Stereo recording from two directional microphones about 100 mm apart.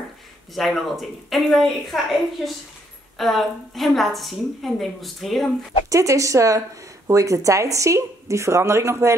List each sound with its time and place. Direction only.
0.6 s a woman's voice: centre (ahead or behind)
5.9 s a woman's voice: 30° right (ahead or behind)